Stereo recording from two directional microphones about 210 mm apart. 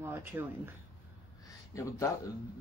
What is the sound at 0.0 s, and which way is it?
Speech, 10° right (ahead or behind).